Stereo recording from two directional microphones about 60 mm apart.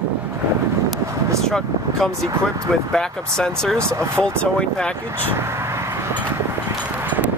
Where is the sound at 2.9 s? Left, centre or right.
Centre.